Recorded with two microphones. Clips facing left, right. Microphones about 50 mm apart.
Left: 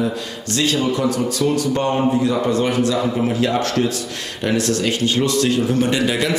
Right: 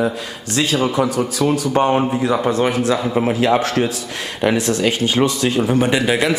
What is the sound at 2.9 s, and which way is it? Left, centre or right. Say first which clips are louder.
A man's voice: right 2 dB; right.